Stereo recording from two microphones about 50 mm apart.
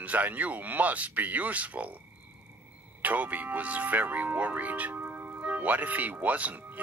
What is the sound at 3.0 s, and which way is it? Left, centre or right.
Speech, right.